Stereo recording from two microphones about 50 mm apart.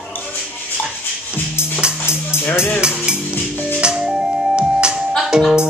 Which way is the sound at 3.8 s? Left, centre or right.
Centre.